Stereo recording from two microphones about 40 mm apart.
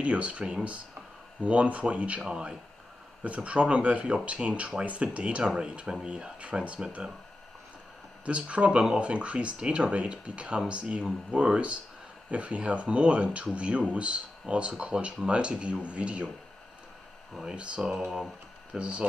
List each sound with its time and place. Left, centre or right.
0.0 s speech: right
3.3 s speech: right
5.4 s speech: centre
8.3 s speech: right
17.5 s speech: right
17.8 s speech: centre
18.8 s speech: right